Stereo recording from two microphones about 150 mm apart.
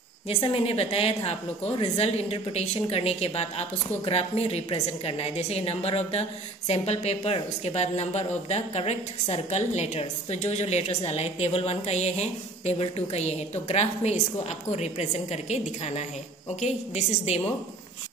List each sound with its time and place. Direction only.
0.3 s a woman's voice: 40° left (ahead or behind)